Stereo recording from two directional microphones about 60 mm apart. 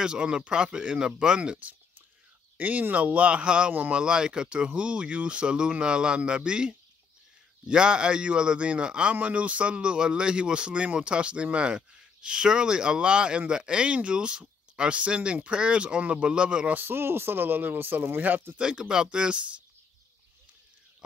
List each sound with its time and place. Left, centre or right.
0.0 s a man's voice: centre
16.7 s speech: right
18.6 s a man's voice: centre